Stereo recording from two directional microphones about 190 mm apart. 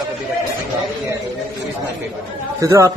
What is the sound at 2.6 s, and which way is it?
Speech, 15° right (ahead or behind).